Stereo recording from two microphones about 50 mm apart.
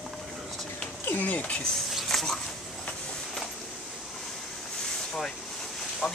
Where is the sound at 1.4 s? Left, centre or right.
Centre.